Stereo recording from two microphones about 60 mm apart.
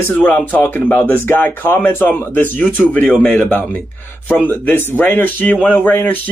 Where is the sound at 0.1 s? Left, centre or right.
Left.